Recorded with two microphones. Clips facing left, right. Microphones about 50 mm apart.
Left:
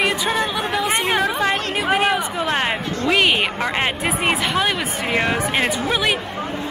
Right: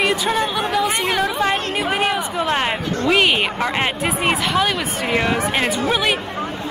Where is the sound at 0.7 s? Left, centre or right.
Left.